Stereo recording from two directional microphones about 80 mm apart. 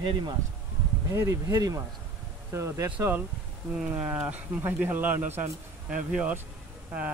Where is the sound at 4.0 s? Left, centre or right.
Right.